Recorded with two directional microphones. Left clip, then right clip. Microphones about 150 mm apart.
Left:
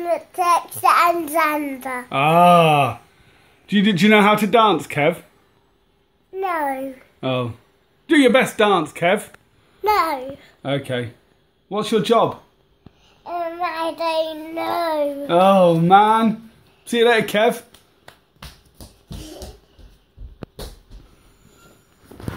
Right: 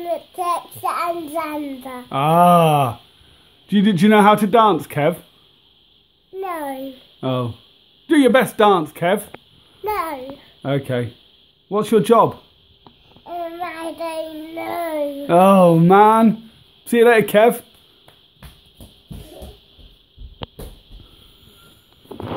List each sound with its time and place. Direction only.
0.0 s child singing: centre (ahead or behind)
2.0 s a man's voice: 15° right (ahead or behind)
6.4 s a child's voice: 10° right (ahead or behind)
9.8 s a child's voice: 5° left (ahead or behind)
10.6 s a man's voice: 40° right (ahead or behind)
13.2 s child singing: 5° left (ahead or behind)
15.2 s speech: 65° right (ahead or behind)
16.8 s speech: 50° right (ahead or behind)